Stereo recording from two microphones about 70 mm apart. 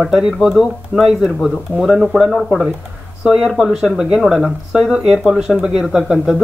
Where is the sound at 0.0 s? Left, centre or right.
Centre.